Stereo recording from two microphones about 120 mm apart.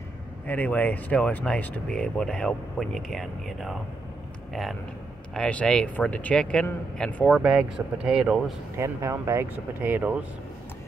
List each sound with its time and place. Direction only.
0.5 s speech: 15° left (ahead or behind)
5.3 s speech: 10° left (ahead or behind)
7.2 s speech: 5° right (ahead or behind)
8.7 s speech: 25° right (ahead or behind)